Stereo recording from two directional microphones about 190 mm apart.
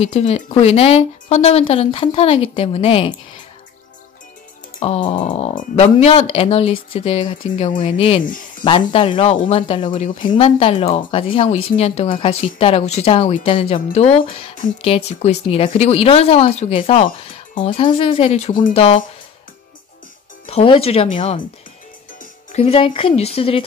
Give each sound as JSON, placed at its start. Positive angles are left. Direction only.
{"t": 0.0, "sound": "speech", "side_deg": 35}
{"t": 4.7, "sound": "speech", "side_deg": 30}
{"t": 20.4, "sound": "speech", "side_deg": 30}
{"t": 22.5, "sound": "speech", "side_deg": 30}